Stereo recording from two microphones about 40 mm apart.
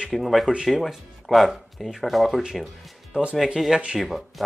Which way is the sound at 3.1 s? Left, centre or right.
Right.